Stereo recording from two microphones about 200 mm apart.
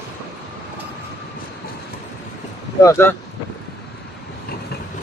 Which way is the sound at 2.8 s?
15° left (ahead or behind).